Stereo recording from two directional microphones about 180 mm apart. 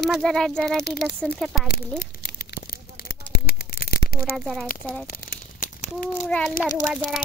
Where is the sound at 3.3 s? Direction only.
60° left (ahead or behind).